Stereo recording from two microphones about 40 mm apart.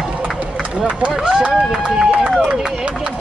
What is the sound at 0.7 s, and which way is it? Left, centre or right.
Speech, right.